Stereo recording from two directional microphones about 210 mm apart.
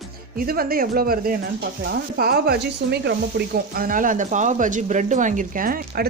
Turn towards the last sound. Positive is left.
turn(degrees=-45)  # may be behind; listen again after turning